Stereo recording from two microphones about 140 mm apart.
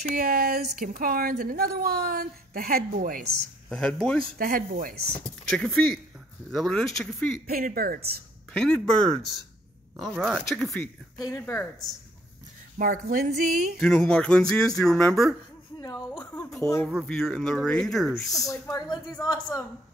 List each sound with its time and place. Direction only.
0.1 s a woman's voice: 90° right
0.7 s a woman's voice: 80° right
3.2 s speech: 5° left (ahead or behind)
4.2 s a woman's voice: 90° right
5.4 s speech: 5° left (ahead or behind)
7.4 s a woman's voice: 90° right
8.5 s speech: 5° left (ahead or behind)
11.1 s speech: 25° left (ahead or behind)
12.7 s a woman's voice: 85° right
13.7 s speech: 5° left (ahead or behind)
15.8 s speech: 20° left (ahead or behind)
17.0 s speech: 5° left (ahead or behind)
18.5 s speech: 25° left (ahead or behind)